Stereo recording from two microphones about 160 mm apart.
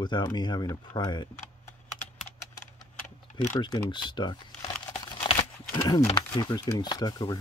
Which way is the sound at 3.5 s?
25° left (ahead or behind).